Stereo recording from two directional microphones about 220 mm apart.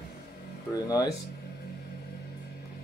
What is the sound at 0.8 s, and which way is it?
Speech, 15° left (ahead or behind).